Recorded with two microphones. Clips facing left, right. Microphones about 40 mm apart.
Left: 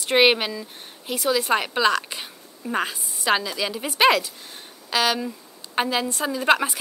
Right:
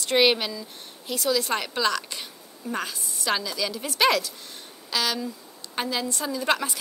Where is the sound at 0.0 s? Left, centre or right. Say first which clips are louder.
Left 3 dB; left.